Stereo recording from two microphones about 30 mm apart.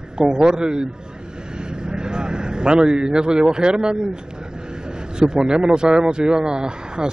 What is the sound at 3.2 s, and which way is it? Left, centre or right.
Speech, right.